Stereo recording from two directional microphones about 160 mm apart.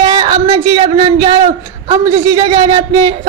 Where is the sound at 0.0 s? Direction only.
25° right (ahead or behind).